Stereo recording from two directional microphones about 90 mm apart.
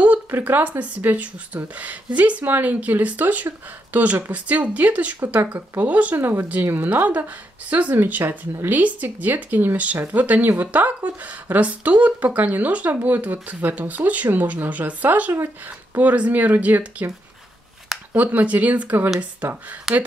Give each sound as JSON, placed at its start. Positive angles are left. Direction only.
{"t": 0.0, "sound": "speech", "side_deg": -15}
{"t": 18.1, "sound": "speech", "side_deg": -15}
{"t": 19.9, "sound": "speech", "side_deg": -5}